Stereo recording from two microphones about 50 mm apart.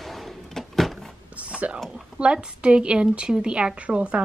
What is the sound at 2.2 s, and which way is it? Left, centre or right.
A woman's voice, right.